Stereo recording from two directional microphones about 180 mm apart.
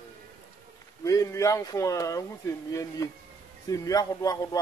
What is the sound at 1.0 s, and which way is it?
A man's voice, 20° left (ahead or behind).